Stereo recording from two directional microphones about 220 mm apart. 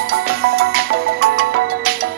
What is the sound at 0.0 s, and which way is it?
Music, 45° right (ahead or behind).